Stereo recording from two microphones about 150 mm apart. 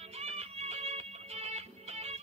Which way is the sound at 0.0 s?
45° right (ahead or behind).